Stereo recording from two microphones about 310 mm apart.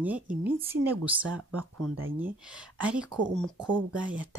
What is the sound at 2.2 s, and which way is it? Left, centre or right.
Speech, centre.